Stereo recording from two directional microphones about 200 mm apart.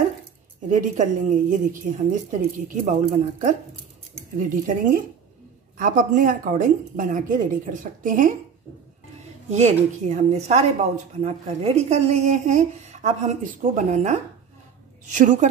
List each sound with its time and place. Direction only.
0.7 s a woman's voice: 40° right (ahead or behind)
9.5 s a woman's voice: 35° right (ahead or behind)